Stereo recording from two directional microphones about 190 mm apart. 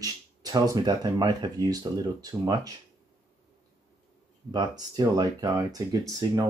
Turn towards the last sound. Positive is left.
turn(degrees=-20)  # may be behind; listen again after turning